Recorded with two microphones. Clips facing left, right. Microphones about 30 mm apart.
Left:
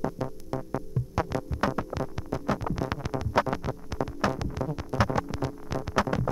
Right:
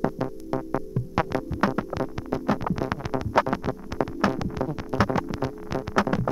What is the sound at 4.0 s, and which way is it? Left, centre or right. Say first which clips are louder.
Music: right 4 dB; centre.